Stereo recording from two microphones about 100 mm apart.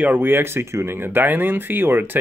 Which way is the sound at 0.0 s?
20° right (ahead or behind).